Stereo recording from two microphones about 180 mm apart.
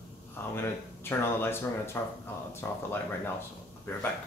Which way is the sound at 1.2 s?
10° left (ahead or behind).